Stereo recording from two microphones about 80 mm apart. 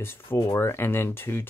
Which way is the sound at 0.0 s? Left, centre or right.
Left.